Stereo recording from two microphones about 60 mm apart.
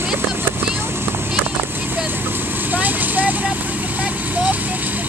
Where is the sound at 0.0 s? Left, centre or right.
Right.